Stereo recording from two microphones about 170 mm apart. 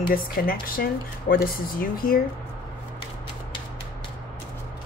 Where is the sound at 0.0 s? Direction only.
60° left (ahead or behind).